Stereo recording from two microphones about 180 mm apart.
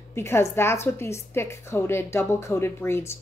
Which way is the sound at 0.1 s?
15° left (ahead or behind).